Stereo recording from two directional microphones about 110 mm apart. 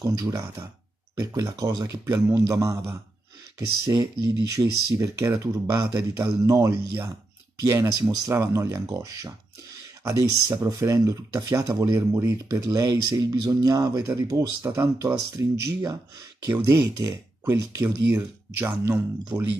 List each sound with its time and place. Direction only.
0.3 s speech: 25° right (ahead or behind)